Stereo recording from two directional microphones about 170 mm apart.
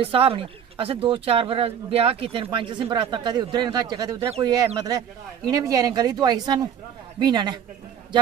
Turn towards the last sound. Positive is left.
turn(degrees=-25)  # may be behind; listen again after turning